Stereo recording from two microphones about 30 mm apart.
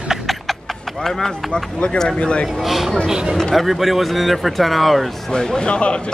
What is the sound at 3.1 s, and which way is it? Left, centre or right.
Speech, right.